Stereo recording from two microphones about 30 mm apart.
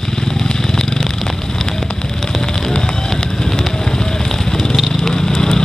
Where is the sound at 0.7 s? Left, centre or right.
Centre.